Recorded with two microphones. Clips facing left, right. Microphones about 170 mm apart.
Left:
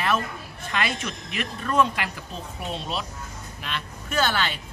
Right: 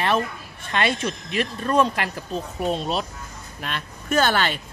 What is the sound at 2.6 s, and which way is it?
Speech, 45° right (ahead or behind).